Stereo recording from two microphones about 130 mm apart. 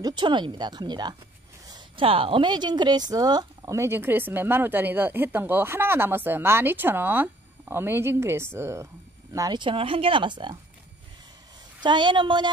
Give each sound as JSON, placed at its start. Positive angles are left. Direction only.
{"t": 0.0, "sound": "speech", "side_deg": -35}
{"t": 1.7, "sound": "speech", "side_deg": -45}
{"t": 9.3, "sound": "speech", "side_deg": -30}
{"t": 11.8, "sound": "speech", "side_deg": -35}